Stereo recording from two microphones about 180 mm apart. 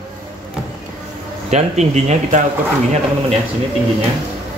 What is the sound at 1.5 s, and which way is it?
Speech, 40° right (ahead or behind).